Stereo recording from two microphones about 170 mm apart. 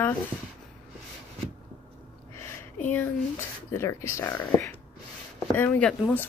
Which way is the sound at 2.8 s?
10° left (ahead or behind).